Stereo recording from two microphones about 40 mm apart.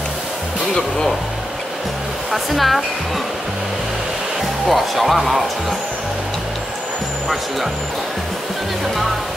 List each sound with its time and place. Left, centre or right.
0.7 s speech: centre
2.3 s speech: centre
4.6 s speech: centre